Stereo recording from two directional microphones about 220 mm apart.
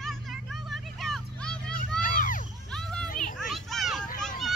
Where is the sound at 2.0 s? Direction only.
40° left (ahead or behind).